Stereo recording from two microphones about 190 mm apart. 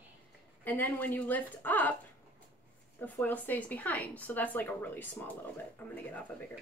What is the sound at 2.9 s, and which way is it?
A woman's voice, 10° left (ahead or behind).